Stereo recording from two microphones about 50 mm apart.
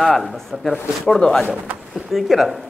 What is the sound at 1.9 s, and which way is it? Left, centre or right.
Speech, centre.